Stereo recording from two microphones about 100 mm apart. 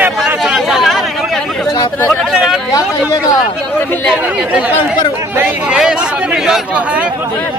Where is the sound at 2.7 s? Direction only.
35° left (ahead or behind).